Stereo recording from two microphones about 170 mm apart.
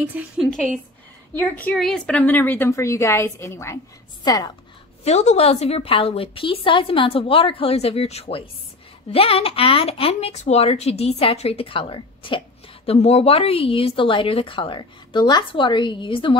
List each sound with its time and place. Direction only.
0.0 s a woman's voice: 10° right (ahead or behind)
1.4 s a woman's voice: 10° left (ahead or behind)
5.0 s speech: 40° left (ahead or behind)